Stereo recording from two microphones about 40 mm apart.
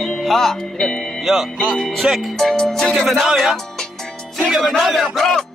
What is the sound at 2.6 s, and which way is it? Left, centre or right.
Music, centre.